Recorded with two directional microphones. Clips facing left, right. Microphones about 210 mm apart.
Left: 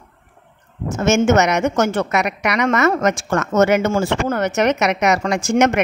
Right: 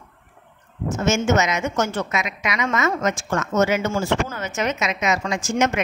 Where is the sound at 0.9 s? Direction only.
65° left (ahead or behind).